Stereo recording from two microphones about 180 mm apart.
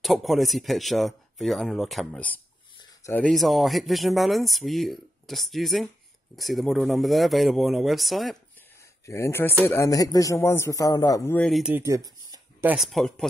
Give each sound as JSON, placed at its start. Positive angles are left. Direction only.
{"t": 0.0, "sound": "speech", "side_deg": 0}
{"t": 9.0, "sound": "speech", "side_deg": 15}
{"t": 11.7, "sound": "a sound", "side_deg": -15}
{"t": 12.6, "sound": "speech", "side_deg": 0}